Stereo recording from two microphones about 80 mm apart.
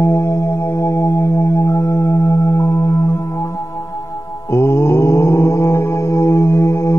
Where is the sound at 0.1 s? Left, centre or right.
Left.